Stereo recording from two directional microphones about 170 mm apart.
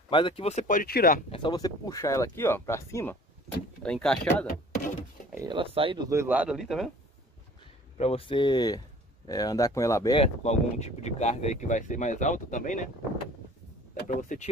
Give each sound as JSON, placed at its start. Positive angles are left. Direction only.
{"t": 0.1, "sound": "speech", "side_deg": 35}
{"t": 1.3, "sound": "speech", "side_deg": 25}
{"t": 3.8, "sound": "speech", "side_deg": 5}
{"t": 5.3, "sound": "a sound", "side_deg": -20}
{"t": 5.6, "sound": "speech", "side_deg": -30}
{"t": 6.0, "sound": "speech", "side_deg": -15}
{"t": 8.0, "sound": "speech", "side_deg": 35}
{"t": 10.2, "sound": "speech", "side_deg": 40}
{"t": 14.0, "sound": "speech", "side_deg": 45}